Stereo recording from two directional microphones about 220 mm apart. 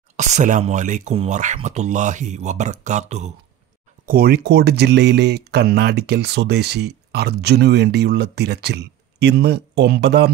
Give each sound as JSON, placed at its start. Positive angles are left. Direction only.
{"t": 0.2, "sound": "speech", "side_deg": -35}
{"t": 4.0, "sound": "speech", "side_deg": -45}